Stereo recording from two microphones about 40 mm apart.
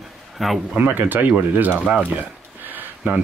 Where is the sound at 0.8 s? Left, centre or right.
Right.